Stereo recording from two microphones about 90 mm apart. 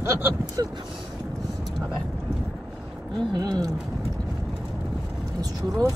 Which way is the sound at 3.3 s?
45° right (ahead or behind).